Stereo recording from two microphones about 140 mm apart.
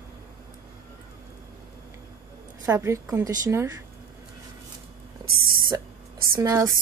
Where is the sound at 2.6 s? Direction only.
20° right (ahead or behind).